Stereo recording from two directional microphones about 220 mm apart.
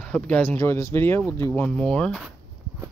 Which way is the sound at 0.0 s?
5° left (ahead or behind).